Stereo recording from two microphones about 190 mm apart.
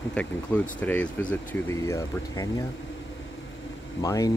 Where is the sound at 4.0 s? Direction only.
20° left (ahead or behind).